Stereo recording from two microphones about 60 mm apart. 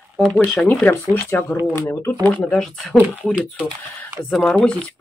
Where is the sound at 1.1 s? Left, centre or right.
Left.